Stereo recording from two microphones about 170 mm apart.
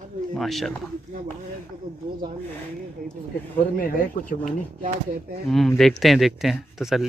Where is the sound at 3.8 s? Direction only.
55° left (ahead or behind).